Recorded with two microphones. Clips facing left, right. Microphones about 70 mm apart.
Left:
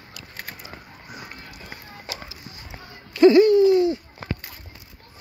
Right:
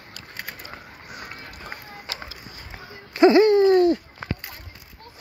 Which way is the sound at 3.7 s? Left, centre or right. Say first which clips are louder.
Right 2 dB; right.